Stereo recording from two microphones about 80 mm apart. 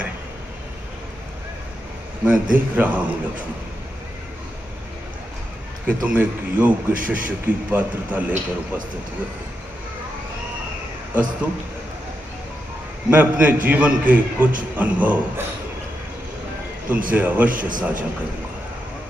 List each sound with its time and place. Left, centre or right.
2.2 s a man's voice: centre
5.9 s a man's voice: centre
13.1 s a man's voice: centre
16.9 s a man's voice: centre